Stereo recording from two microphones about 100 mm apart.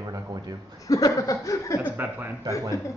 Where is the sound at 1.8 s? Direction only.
20° right (ahead or behind).